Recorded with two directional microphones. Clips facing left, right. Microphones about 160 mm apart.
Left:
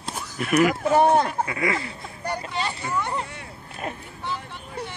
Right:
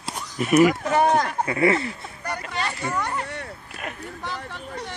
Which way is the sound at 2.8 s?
65° right (ahead or behind).